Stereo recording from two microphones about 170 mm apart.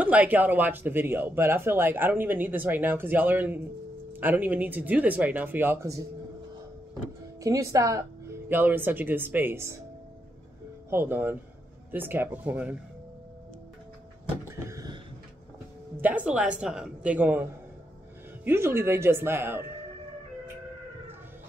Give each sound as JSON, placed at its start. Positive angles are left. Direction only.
{"t": 0.0, "sound": "speech", "side_deg": -10}
{"t": 7.4, "sound": "speech", "side_deg": -20}
{"t": 10.9, "sound": "speech", "side_deg": -10}
{"t": 14.5, "sound": "a sound", "side_deg": -20}
{"t": 16.0, "sound": "speech", "side_deg": -10}